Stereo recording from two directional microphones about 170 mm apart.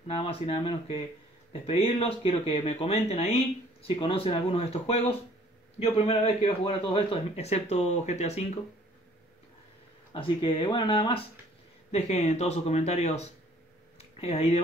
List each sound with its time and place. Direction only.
0.0 s a man's voice: 35° left (ahead or behind)
10.1 s a man's voice: 30° left (ahead or behind)
11.9 s a man's voice: 45° left (ahead or behind)
13.9 s a sound: 40° left (ahead or behind)